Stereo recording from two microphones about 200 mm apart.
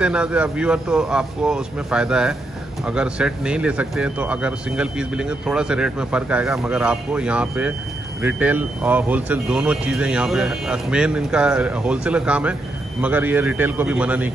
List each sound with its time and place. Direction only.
0.0 s a man's voice: 5° right (ahead or behind)